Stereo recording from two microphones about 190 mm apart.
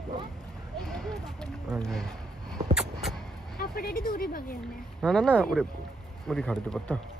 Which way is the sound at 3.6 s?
50° left (ahead or behind).